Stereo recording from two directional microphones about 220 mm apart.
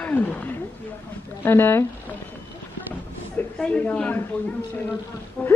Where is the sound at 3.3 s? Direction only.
5° left (ahead or behind).